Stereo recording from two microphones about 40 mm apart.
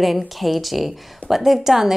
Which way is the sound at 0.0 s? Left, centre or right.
Centre.